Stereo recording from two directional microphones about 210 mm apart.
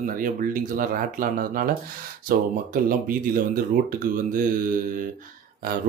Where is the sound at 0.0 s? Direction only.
40° right (ahead or behind).